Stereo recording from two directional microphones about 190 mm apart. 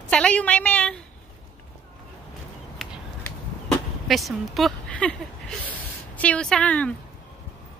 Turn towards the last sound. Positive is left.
turn(degrees=5)  # may be behind; listen again after turning